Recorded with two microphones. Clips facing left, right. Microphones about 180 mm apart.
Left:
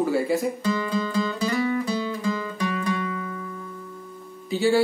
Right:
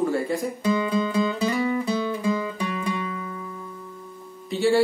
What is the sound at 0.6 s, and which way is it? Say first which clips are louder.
Music: right 2 dB; 20° right (ahead or behind).